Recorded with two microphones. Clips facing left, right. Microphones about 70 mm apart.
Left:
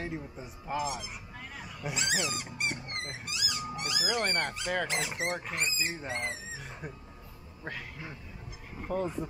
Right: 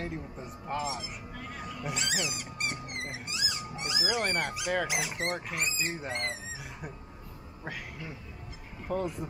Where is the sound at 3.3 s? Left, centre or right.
Right.